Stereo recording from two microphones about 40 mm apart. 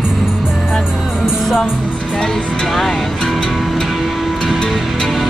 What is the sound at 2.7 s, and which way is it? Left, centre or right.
Music, centre.